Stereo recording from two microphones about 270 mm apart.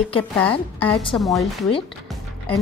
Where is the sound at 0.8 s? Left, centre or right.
Centre.